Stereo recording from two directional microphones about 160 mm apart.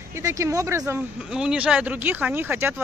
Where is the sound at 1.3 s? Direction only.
5° right (ahead or behind).